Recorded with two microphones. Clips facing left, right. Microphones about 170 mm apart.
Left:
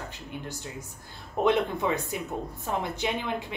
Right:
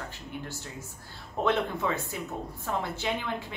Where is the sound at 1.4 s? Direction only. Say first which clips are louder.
Left 3 dB; 15° left (ahead or behind).